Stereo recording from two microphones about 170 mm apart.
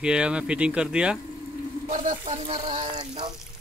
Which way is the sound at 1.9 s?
50° right (ahead or behind).